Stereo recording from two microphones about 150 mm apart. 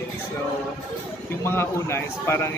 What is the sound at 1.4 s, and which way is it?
Speech, 15° left (ahead or behind).